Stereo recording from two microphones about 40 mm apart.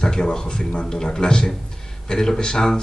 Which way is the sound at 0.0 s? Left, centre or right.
Centre.